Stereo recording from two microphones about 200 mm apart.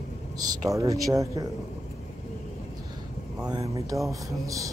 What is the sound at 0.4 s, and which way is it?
Speech, 15° right (ahead or behind).